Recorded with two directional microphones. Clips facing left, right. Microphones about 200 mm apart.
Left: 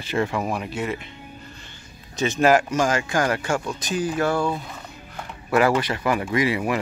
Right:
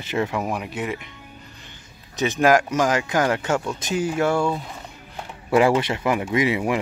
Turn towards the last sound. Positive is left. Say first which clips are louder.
# right 1 dB
turn(degrees=-20)  # may be behind; listen again after turning